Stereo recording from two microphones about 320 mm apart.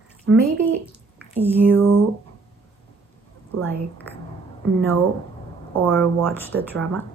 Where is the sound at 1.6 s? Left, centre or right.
Centre.